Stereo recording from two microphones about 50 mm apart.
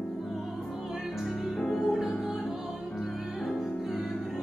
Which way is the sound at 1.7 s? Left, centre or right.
Centre.